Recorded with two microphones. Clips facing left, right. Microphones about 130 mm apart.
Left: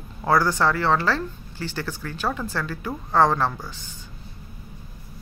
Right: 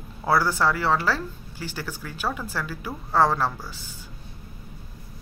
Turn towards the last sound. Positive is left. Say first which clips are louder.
# left 2 dB
turn(degrees=-5)  # may be behind; listen again after turning